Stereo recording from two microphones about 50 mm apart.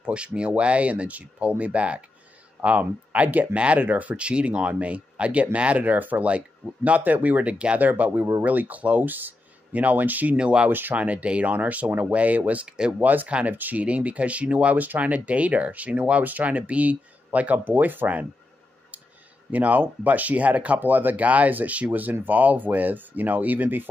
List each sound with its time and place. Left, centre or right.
0.0 s speech: right
7.8 s speech: right
10.3 s speech: centre
10.7 s speech: right
11.0 s speech: right
12.6 s speech: centre
13.0 s speech: right
19.5 s speech: right